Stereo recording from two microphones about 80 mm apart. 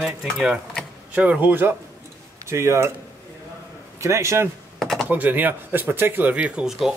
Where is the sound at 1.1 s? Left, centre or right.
Centre.